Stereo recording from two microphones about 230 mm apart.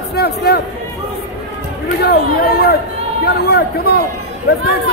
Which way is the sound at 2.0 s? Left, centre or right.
Left.